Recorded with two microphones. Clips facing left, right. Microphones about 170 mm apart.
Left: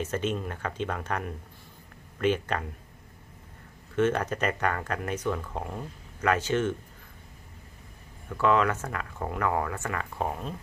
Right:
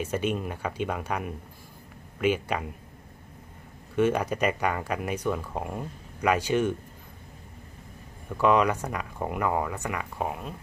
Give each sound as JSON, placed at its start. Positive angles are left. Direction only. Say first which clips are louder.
{"t": 0.0, "sound": "speech", "louder": "right 1 dB", "side_deg": -10}
{"t": 3.9, "sound": "speech", "louder": "right 1 dB", "side_deg": -10}
{"t": 8.4, "sound": "speech", "louder": "right 2 dB", "side_deg": -15}